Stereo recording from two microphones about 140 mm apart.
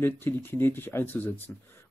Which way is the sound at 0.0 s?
15° left (ahead or behind).